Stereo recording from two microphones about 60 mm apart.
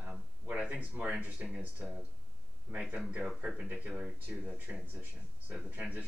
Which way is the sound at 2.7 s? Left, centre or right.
Right.